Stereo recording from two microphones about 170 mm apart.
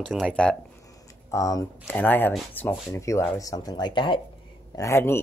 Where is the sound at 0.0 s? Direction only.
Centre (ahead or behind).